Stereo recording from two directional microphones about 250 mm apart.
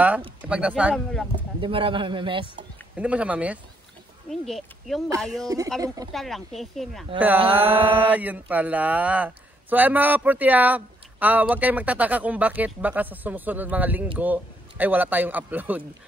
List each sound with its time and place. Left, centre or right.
0.5 s speech: centre
1.6 s a man's voice: right
3.0 s speech: centre